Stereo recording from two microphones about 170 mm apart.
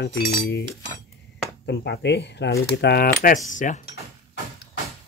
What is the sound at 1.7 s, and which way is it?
Speech, 80° left.